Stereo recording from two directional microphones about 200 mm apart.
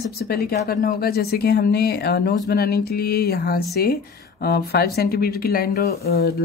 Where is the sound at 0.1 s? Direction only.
50° left (ahead or behind).